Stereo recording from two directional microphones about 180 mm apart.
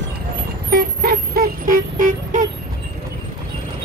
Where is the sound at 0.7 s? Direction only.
55° right (ahead or behind).